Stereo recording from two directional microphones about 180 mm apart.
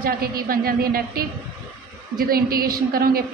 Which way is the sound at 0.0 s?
55° right (ahead or behind).